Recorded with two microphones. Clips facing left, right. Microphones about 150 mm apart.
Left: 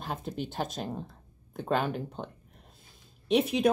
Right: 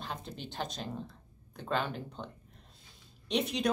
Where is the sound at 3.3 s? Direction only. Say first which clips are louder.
Left 6 dB; 50° left (ahead or behind).